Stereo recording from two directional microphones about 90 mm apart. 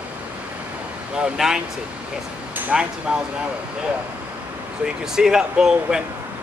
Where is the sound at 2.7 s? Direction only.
10° right (ahead or behind).